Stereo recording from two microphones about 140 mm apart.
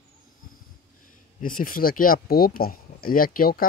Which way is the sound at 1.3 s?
85° left.